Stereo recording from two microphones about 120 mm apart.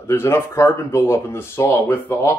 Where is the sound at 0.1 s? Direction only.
20° left (ahead or behind).